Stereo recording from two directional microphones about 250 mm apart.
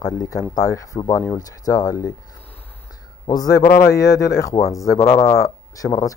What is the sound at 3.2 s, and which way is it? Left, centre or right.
Speech, centre.